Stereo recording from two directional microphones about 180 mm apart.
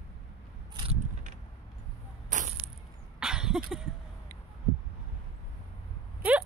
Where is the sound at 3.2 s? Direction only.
5° right (ahead or behind).